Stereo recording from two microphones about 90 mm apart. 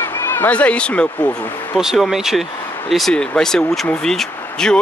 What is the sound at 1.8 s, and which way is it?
Speech, 5° right (ahead or behind).